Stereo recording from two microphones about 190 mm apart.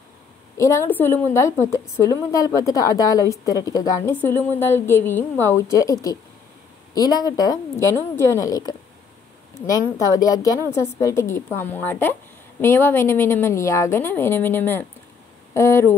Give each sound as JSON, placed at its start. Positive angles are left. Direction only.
{"t": 0.6, "sound": "a woman's voice", "side_deg": 15}